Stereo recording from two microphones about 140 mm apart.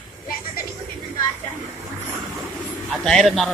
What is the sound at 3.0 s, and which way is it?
Speech, 5° left (ahead or behind).